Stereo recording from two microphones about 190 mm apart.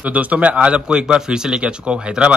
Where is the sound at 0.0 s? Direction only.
5° right (ahead or behind).